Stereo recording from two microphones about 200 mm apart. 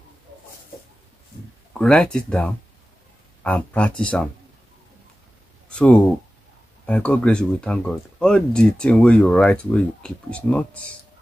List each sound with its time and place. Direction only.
1.7 s speech: 5° left (ahead or behind)
5.7 s speech: 5° left (ahead or behind)